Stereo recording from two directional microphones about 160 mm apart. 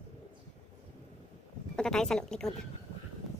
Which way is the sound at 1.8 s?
5° left (ahead or behind).